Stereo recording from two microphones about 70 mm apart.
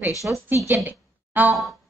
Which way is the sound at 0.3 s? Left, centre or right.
Right.